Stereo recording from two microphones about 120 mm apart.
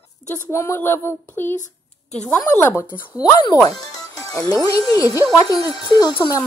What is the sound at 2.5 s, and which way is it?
Speech, 15° left (ahead or behind).